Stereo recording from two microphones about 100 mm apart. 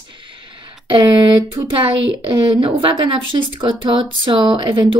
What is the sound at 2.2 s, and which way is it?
A woman's voice, 60° right (ahead or behind).